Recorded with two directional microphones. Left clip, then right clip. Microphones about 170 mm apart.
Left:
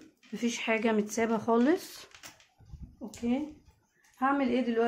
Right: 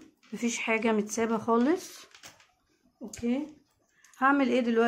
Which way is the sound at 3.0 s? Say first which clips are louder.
Right 1 dB; 15° right (ahead or behind).